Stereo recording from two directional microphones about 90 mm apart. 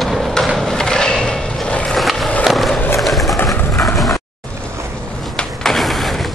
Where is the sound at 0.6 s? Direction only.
5° left (ahead or behind).